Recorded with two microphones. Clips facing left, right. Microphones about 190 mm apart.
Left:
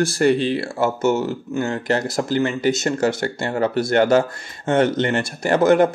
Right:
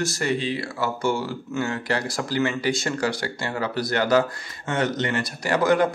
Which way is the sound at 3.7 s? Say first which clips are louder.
Left 6 dB; 25° left (ahead or behind).